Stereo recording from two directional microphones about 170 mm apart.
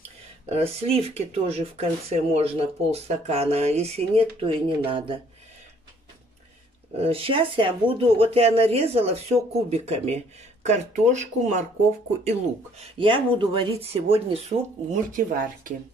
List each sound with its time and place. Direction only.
0.5 s speech: 35° right (ahead or behind)
7.0 s speech: 35° right (ahead or behind)
14.9 s speech: 50° right (ahead or behind)